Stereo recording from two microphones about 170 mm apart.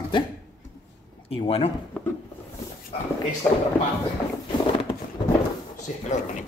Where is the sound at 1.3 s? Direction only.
35° left (ahead or behind).